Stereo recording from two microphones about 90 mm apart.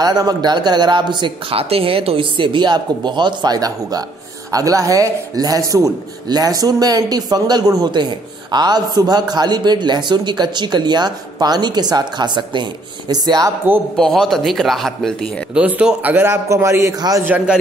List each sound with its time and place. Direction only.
0.0 s a man's voice: 45° right (ahead or behind)
13.9 s speech: 5° left (ahead or behind)
15.5 s a man's voice: 10° right (ahead or behind)
16.3 s a man's voice: 30° right (ahead or behind)
17.3 s a man's voice: 15° right (ahead or behind)